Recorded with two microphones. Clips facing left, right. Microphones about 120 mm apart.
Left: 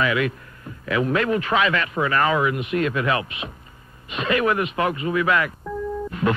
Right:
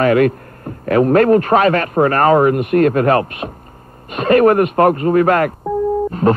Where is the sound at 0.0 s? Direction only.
50° right (ahead or behind).